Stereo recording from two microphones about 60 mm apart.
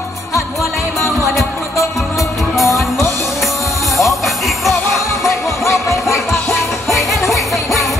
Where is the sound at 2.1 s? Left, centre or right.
Centre.